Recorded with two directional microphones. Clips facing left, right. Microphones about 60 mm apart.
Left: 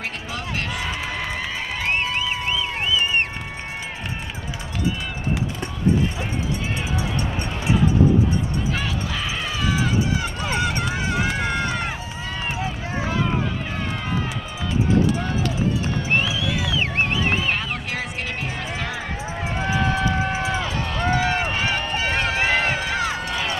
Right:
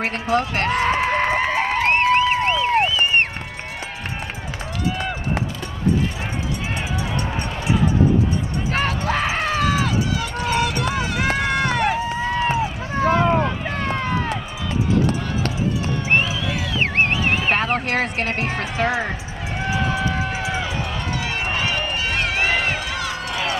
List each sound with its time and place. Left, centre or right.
0.0 s a sound: right
8.7 s run: right
10.5 s run: left
11.2 s run: right
13.0 s run: right
16.1 s music: right
17.1 s a sound: right
17.6 s music: right
20.4 s run: right
21.1 s run: left